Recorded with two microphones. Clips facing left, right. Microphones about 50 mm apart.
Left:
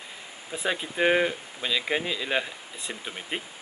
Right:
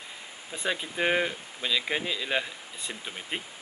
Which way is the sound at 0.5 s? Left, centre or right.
Centre.